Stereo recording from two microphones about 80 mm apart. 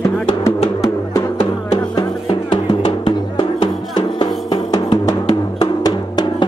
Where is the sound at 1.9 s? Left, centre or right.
Left.